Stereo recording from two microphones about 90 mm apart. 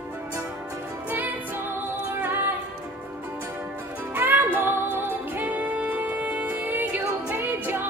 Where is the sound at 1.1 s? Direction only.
20° right (ahead or behind).